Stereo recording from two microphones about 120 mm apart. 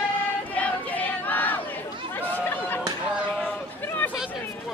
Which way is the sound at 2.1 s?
15° left (ahead or behind).